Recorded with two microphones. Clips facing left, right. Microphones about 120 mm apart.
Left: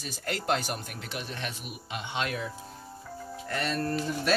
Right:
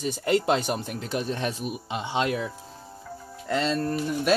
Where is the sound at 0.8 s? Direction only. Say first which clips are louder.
Right 9 dB; 30° right (ahead or behind).